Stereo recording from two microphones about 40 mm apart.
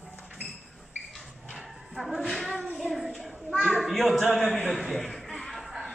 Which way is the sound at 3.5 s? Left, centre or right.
Centre.